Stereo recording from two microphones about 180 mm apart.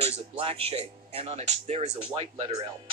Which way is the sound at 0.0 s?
30° right (ahead or behind).